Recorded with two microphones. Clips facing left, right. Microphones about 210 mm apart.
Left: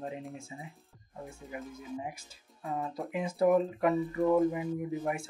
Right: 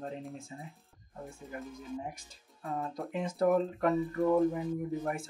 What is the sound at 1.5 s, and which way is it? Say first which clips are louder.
Speech: even; 5° left (ahead or behind).